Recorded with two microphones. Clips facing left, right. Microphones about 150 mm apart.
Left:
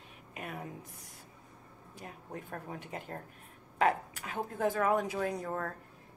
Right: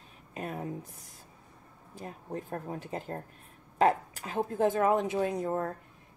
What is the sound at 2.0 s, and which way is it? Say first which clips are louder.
A woman's voice: right 6 dB; 30° right (ahead or behind).